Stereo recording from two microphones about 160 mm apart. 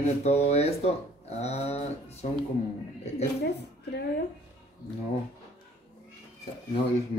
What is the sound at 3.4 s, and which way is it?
Speech, 90° left.